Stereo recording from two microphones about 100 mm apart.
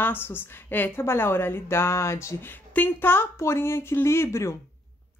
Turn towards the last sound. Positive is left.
turn(degrees=25)  # may be behind; listen again after turning